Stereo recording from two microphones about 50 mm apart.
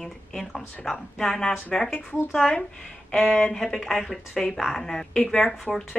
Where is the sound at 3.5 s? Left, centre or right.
Centre.